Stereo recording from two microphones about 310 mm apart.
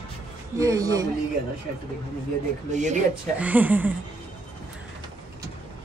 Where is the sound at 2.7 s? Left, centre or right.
Right.